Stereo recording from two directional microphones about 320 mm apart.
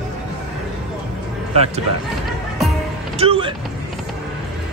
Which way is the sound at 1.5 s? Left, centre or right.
Centre.